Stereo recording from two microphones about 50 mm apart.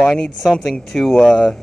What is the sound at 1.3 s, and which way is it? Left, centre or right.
Speech, centre.